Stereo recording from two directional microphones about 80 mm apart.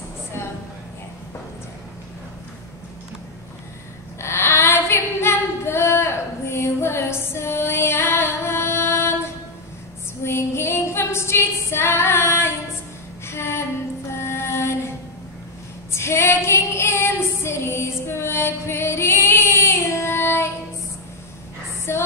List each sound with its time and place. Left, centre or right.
4.2 s female singing: left
14.1 s music: left
15.9 s female singing: left
21.9 s a sound: left